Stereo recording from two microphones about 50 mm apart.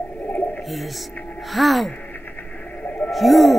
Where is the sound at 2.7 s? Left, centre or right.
Left.